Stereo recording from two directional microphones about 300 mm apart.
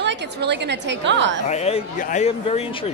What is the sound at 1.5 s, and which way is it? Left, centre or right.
Speech, left.